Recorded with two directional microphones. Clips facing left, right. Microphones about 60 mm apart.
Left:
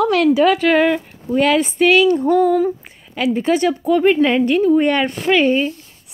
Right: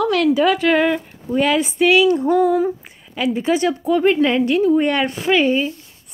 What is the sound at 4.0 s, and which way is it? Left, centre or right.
Speech, centre.